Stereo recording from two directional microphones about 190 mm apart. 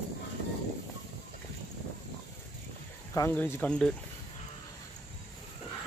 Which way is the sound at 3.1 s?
15° left (ahead or behind).